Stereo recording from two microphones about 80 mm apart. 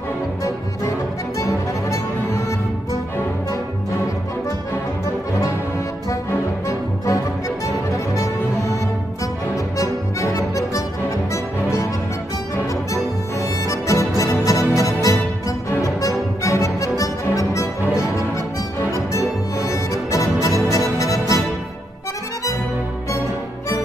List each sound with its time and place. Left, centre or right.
1.4 s music: left
9.8 s music: left
13.7 s music: left
19.7 s music: left